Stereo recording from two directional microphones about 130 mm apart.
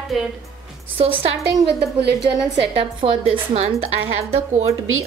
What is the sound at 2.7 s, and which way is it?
A woman's voice, 40° right (ahead or behind).